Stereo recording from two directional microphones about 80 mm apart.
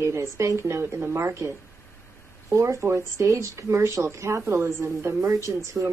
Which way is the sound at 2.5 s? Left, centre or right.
Right.